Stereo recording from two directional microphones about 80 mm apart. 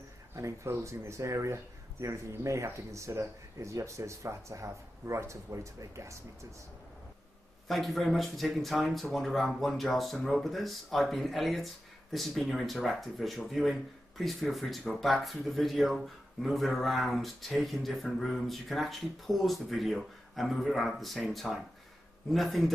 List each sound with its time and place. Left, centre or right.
0.4 s speech: right
7.6 s speech: centre